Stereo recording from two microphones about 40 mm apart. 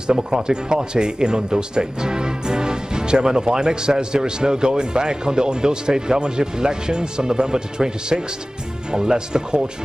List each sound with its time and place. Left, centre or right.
0.0 s speech: centre